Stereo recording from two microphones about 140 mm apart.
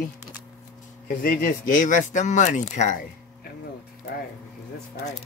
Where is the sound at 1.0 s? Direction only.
80° left; by 3.0 s 55° left (ahead or behind).